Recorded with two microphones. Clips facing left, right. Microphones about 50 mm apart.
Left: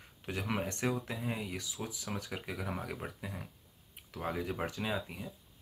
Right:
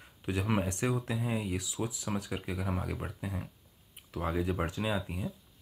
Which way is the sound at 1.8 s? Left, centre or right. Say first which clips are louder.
Right 5 dB; centre.